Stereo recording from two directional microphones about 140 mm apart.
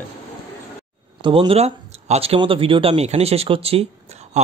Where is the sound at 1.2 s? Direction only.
35° right (ahead or behind).